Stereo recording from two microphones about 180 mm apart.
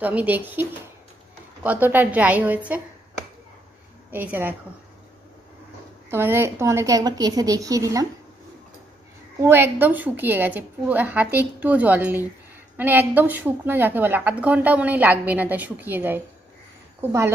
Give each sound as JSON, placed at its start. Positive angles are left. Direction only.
{"t": 0.0, "sound": "a woman's voice", "side_deg": -10}
{"t": 4.1, "sound": "a woman's voice", "side_deg": -10}
{"t": 6.0, "sound": "a woman's voice", "side_deg": -15}
{"t": 9.4, "sound": "a woman's voice", "side_deg": -15}